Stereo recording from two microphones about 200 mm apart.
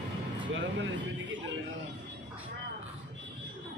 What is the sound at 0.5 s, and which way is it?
Speech, 60° right (ahead or behind).